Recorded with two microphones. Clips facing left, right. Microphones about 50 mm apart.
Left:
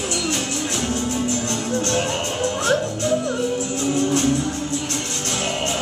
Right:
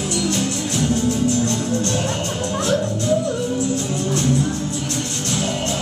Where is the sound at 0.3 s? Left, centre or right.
Left.